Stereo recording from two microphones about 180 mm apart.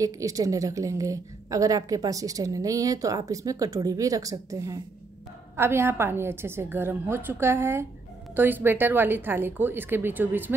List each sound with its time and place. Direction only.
0.0 s a woman's voice: 20° right (ahead or behind)